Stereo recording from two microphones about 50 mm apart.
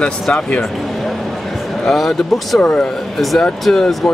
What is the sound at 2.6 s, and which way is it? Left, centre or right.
Speech, centre.